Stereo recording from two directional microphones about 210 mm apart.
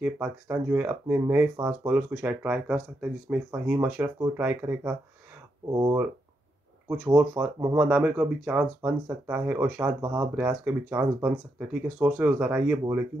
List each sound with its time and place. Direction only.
0.0 s speech: 5° right (ahead or behind)
7.2 s speech: 5° right (ahead or behind)